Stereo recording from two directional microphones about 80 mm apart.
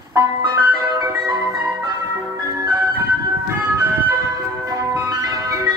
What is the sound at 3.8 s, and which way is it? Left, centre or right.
Ice cream truck, right.